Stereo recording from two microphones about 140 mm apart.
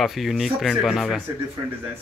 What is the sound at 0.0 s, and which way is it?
A man's voice, centre (ahead or behind).